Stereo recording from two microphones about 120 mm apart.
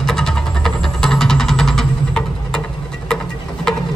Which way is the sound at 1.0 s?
5° left (ahead or behind).